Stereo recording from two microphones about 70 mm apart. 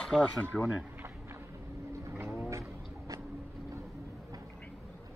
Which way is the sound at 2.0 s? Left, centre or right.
Right.